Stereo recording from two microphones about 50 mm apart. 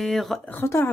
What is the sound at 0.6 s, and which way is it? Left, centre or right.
Speech, left.